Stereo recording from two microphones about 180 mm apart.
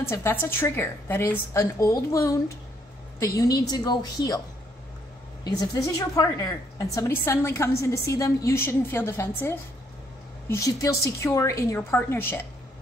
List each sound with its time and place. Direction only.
0.1 s a woman's voice: 10° left (ahead or behind)
5.4 s a woman's voice: 20° left (ahead or behind)